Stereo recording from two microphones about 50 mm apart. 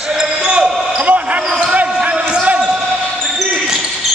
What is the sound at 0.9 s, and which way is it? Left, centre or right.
Basketball bounce, right.